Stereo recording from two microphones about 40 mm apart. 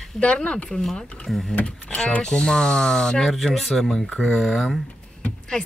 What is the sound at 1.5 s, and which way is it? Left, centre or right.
Speech, left.